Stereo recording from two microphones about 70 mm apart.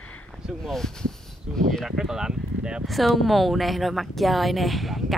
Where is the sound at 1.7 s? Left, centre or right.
Centre.